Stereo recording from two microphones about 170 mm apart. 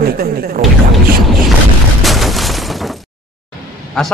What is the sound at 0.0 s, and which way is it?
Speech, 60° right (ahead or behind).